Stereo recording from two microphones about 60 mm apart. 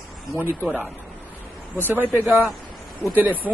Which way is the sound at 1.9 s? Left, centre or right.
Right.